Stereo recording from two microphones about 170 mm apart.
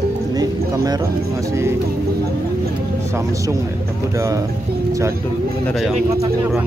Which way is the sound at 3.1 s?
15° right (ahead or behind).